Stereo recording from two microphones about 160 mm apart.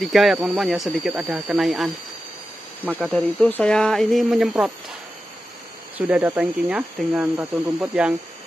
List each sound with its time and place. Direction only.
0.0 s speech: centre (ahead or behind)
3.0 s speech: 5° left (ahead or behind)
5.9 s speech: 10° right (ahead or behind)